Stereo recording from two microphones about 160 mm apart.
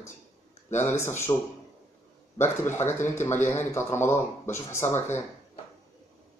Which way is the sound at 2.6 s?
15° left (ahead or behind).